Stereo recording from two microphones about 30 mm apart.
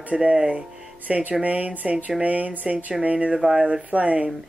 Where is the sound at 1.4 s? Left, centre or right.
Right.